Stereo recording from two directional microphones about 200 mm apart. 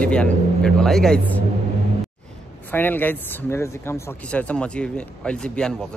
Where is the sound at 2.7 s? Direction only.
10° left (ahead or behind).